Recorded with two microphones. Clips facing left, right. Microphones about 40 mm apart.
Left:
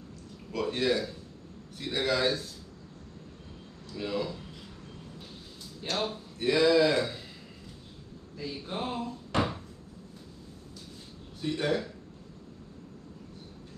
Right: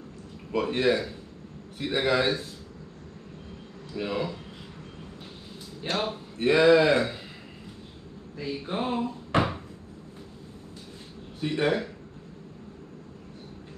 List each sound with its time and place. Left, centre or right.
0.5 s speech: right
3.9 s speech: right
5.9 s speech: right
8.4 s speech: right
11.4 s speech: right